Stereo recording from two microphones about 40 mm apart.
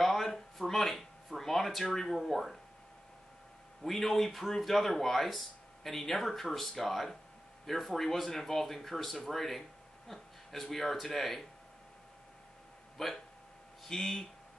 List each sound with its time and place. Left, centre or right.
0.0 s speech: centre
3.8 s speech: centre
12.9 s speech: centre